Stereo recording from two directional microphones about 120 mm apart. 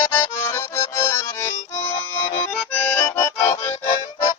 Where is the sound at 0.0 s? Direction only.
20° left (ahead or behind).